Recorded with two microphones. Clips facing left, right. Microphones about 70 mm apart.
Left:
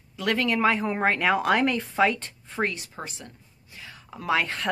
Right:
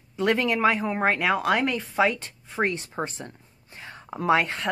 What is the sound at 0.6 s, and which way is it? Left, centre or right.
A woman's voice, centre.